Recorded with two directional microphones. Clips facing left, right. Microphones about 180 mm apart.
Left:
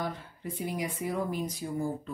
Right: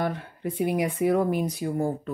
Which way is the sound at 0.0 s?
65° right (ahead or behind).